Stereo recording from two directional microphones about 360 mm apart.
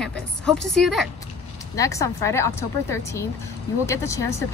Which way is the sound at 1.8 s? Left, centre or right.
Centre.